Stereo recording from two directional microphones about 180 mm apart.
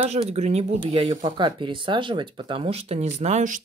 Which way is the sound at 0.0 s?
35° right (ahead or behind).